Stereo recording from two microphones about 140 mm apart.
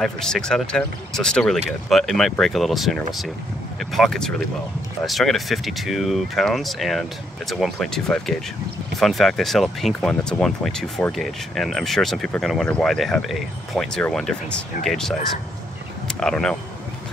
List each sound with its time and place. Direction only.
0.0 s speech: 5° left (ahead or behind)